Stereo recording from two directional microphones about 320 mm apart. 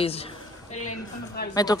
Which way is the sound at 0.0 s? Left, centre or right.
Centre.